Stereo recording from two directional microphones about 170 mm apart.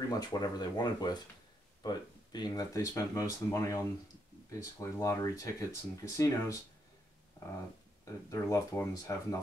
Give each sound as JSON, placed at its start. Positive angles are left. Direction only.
{"t": 0.2, "sound": "speech", "side_deg": 25}
{"t": 8.0, "sound": "speech", "side_deg": 20}